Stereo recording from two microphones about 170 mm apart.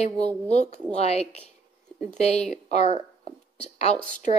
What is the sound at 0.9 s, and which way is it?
A woman's voice, 40° left (ahead or behind).